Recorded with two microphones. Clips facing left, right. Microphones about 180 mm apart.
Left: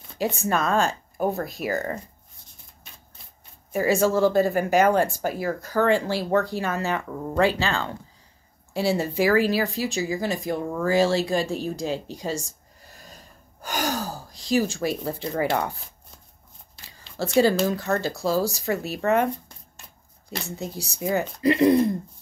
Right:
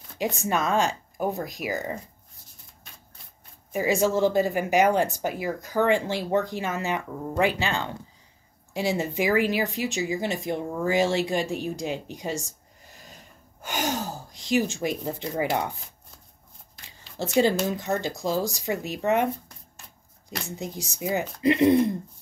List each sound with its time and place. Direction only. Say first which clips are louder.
0.4 s speech: left 1 dB; 15° right (ahead or behind)
3.7 s speech: left 2 dB; 15° right (ahead or behind)
12.2 s a sound: left 2 dB; 15° right (ahead or behind)
13.7 s speech: left 1 dB; 20° right (ahead or behind)
17.4 s speech: left 2 dB; 20° right (ahead or behind)
20.2 s speech: left 1 dB; 15° right (ahead or behind)